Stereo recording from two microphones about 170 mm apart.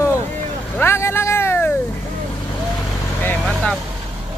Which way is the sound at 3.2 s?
5° left (ahead or behind).